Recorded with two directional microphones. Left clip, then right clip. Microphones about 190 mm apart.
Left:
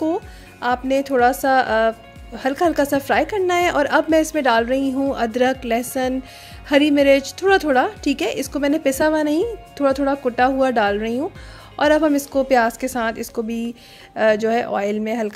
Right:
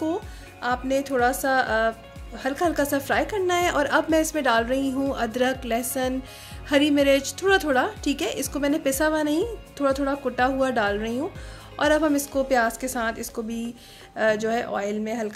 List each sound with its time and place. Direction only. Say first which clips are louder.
0.0 s speech: left 5 dB; 35° left (ahead or behind)